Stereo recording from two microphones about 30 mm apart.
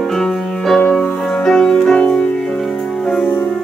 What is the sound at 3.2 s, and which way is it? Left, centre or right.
Music, left.